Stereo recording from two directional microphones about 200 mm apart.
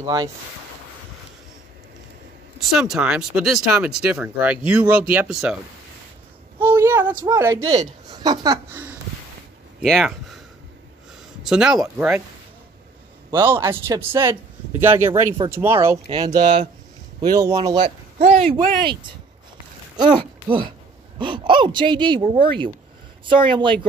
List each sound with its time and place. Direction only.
0.0 s speech: 20° right (ahead or behind)
2.6 s speech: centre (ahead or behind)
6.6 s a sound: 10° right (ahead or behind)
7.2 s speech: 15° right (ahead or behind)
9.8 s speech: centre (ahead or behind)
11.4 s speech: centre (ahead or behind)
13.3 s speech: 10° right (ahead or behind)
21.2 s speech: 25° right (ahead or behind)